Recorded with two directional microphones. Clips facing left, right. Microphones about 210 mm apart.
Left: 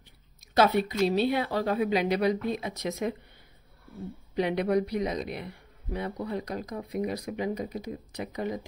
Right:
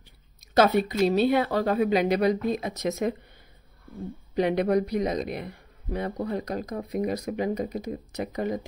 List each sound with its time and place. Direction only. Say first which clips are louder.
0.6 s speech: right 3 dB; 45° right (ahead or behind)
4.4 s speech: right 3 dB; 45° right (ahead or behind)